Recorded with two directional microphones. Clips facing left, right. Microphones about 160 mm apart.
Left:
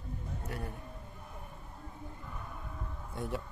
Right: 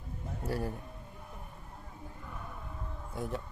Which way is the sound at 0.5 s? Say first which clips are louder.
Right 8 dB; 30° right (ahead or behind).